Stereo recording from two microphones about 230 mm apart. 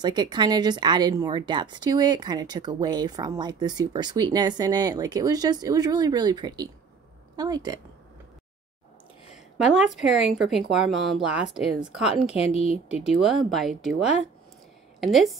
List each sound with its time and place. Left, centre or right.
0.0 s speech: centre
9.7 s speech: centre
13.5 s speech: centre